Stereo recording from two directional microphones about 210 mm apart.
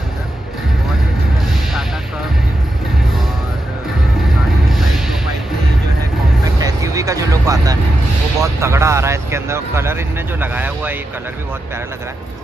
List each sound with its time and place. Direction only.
4.6 s music: centre (ahead or behind)
6.6 s music: 15° right (ahead or behind)
8.4 s vehicle: 15° right (ahead or behind)